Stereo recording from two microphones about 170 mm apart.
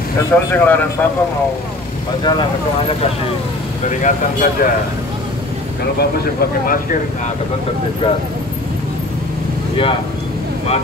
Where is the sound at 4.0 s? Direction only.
55° left (ahead or behind).